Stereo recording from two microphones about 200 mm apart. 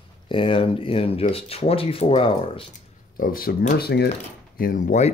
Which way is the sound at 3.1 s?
45° left (ahead or behind).